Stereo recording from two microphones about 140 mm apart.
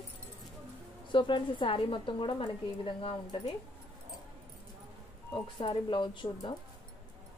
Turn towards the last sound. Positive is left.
turn(degrees=35)  # may be behind; listen again after turning